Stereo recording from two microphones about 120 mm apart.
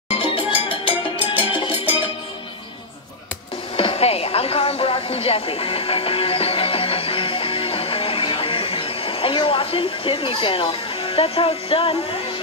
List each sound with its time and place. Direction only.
0.1 s music: 50° left (ahead or behind)
3.7 s television: 55° left (ahead or behind)